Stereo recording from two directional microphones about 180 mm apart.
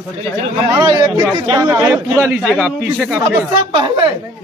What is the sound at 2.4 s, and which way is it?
Speech, 5° left (ahead or behind).